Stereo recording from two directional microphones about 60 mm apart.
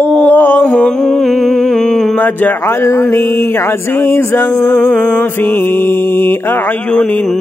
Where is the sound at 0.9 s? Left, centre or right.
Centre.